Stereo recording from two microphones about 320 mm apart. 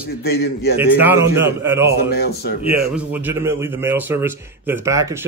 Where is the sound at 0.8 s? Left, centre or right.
Centre.